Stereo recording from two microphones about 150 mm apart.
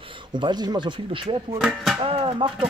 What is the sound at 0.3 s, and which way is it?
Speech, 30° right (ahead or behind).